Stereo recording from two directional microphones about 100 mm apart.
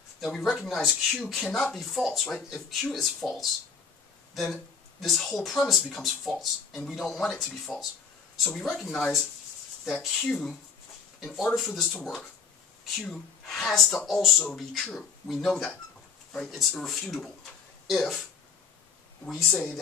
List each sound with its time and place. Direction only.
0.2 s speech: centre (ahead or behind)
12.0 s speech: 10° left (ahead or behind)
19.2 s speech: 5° left (ahead or behind)